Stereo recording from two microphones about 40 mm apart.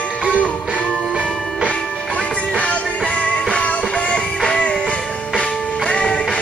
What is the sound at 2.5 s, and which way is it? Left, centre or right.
Music, left.